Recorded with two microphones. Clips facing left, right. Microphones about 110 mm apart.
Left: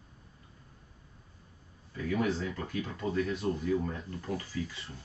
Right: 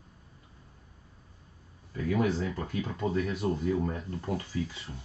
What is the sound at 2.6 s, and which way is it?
Speech, 25° right (ahead or behind).